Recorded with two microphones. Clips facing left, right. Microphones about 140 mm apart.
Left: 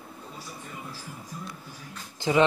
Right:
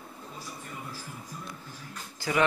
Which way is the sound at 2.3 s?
20° left (ahead or behind).